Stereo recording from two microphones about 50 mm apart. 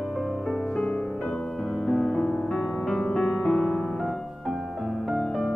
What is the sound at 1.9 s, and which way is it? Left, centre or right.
Music, centre.